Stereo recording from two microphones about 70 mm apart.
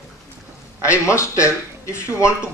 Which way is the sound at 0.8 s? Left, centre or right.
Left.